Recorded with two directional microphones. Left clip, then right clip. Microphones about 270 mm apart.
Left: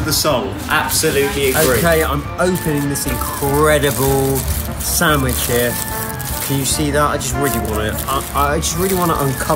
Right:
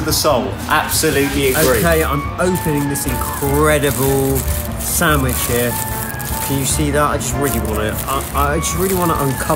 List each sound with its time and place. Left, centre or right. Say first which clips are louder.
0.0 s a man's voice: right 1 dB; centre
0.7 s a man's voice: even; centre
1.5 s speech: even; centre